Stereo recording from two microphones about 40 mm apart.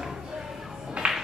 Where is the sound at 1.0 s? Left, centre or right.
Right.